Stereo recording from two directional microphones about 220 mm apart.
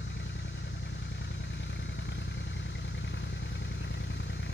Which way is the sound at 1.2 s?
55° left (ahead or behind).